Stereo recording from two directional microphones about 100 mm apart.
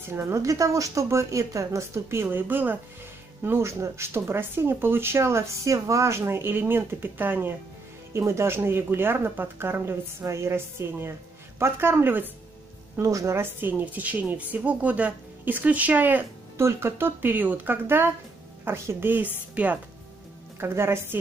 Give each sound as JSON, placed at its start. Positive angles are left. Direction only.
{"t": 0.1, "sound": "speech", "side_deg": -30}